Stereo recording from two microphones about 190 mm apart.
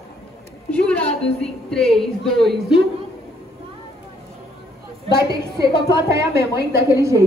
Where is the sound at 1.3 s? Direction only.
5° left (ahead or behind).